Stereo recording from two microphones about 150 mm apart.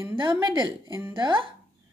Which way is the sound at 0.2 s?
30° right (ahead or behind).